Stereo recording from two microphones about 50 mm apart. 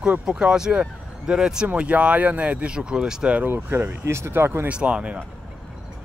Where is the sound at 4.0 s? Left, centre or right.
Right.